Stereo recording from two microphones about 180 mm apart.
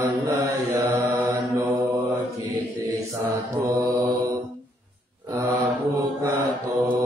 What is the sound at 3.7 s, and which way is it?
Mantra, 15° right (ahead or behind).